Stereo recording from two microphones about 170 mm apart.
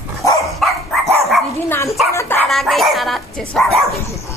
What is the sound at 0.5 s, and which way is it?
Dog, centre (ahead or behind).